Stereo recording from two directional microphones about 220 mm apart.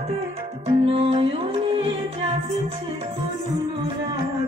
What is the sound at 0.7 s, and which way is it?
Music, 25° right (ahead or behind).